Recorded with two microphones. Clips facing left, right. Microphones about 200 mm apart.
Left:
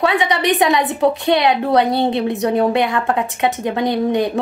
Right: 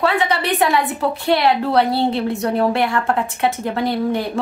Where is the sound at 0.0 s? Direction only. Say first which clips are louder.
Left 2 dB; 20° left (ahead or behind).